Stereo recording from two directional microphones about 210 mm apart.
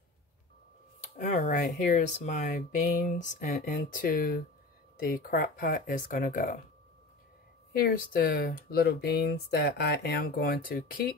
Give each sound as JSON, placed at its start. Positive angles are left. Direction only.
{"t": 1.1, "sound": "speech", "side_deg": 40}
{"t": 7.7, "sound": "speech", "side_deg": 45}